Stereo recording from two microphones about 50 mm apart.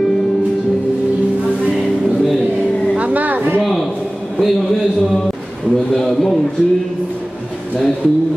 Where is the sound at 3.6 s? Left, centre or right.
Centre.